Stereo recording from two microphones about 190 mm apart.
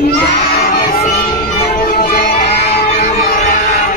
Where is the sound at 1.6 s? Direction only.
45° left (ahead or behind).